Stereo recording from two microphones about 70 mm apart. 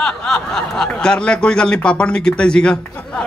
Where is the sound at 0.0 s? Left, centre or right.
Centre.